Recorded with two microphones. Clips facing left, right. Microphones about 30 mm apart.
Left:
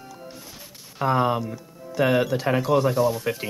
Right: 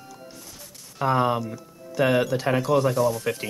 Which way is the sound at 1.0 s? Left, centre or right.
Centre.